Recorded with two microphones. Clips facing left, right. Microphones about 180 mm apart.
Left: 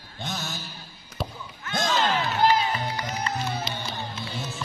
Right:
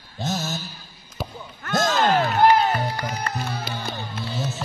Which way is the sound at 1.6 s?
45° right (ahead or behind).